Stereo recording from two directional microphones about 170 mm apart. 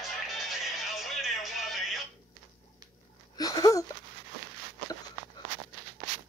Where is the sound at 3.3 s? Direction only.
20° left (ahead or behind).